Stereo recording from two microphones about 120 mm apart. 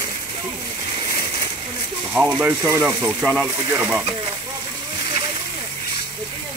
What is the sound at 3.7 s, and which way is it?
Speech, 15° right (ahead or behind).